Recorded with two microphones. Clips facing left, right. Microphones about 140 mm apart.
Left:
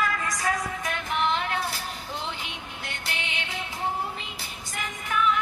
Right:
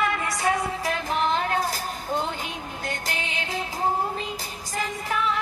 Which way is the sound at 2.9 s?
40° right (ahead or behind).